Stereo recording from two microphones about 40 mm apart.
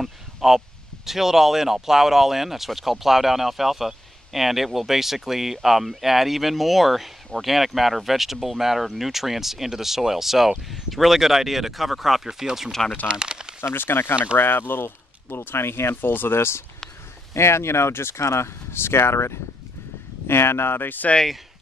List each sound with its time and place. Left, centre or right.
0.0 s a sound: centre
1.0 s speech: centre
13.1 s a sound: centre
13.6 s speech: left
16.1 s speech: left
20.2 s speech: left